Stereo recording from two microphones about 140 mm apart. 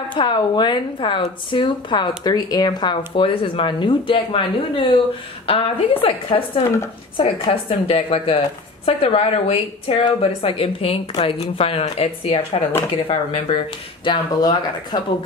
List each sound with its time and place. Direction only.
0.1 s a woman's voice: 30° left (ahead or behind)